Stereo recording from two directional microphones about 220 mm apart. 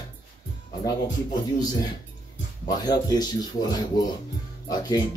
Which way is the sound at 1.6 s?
15° left (ahead or behind).